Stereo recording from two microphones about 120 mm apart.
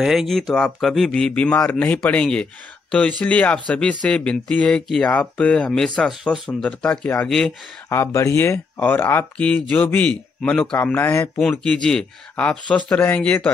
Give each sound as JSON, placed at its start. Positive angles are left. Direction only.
{"t": 0.0, "sound": "speech", "side_deg": 0}
{"t": 7.2, "sound": "speech", "side_deg": 0}
{"t": 7.9, "sound": "speech", "side_deg": 25}